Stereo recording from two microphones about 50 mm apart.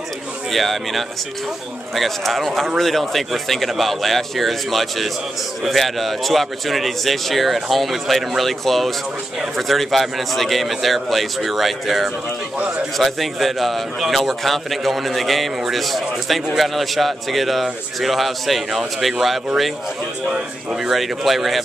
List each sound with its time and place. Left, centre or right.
0.5 s a man's voice: centre
20.9 s a man's voice: centre